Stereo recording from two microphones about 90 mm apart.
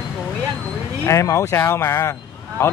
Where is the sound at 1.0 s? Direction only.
35° left (ahead or behind).